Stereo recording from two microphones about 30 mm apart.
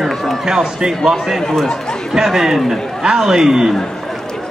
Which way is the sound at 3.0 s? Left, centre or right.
Centre.